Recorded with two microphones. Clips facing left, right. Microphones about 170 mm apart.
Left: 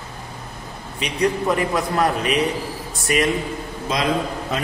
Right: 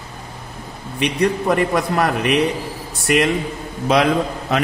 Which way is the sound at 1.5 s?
65° right (ahead or behind).